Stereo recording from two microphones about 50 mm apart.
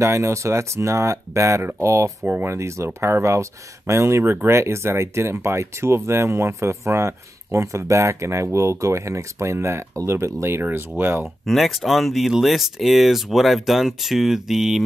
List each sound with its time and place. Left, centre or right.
0.0 s speech: right
1.6 s speech: right
2.4 s speech: right
4.2 s speech: right
4.5 s speech: right
11.4 s speech: centre